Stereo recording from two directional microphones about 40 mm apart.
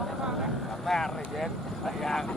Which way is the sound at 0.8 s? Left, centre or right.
Centre.